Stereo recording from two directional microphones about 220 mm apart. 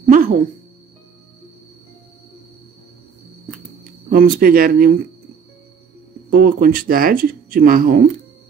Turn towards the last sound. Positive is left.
turn(degrees=-40)  # may be behind; listen again after turning